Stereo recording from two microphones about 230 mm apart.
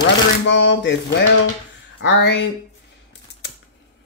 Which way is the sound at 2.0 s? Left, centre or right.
Left.